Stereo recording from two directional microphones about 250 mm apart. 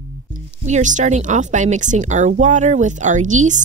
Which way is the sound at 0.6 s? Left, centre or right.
Right.